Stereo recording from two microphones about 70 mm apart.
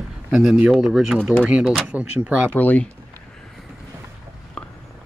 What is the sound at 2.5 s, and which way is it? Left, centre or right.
Speech, left.